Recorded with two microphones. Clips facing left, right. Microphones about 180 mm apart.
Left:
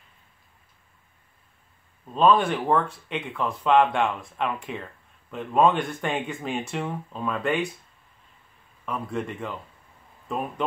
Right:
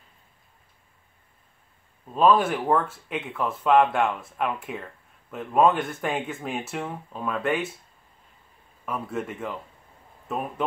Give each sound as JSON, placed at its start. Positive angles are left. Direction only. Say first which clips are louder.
{"t": 2.0, "sound": "speech", "louder": "even", "side_deg": -5}
{"t": 8.8, "sound": "speech", "louder": "even", "side_deg": -5}